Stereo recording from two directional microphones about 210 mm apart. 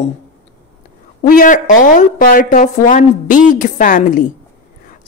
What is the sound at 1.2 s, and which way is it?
A woman's voice, 40° left (ahead or behind).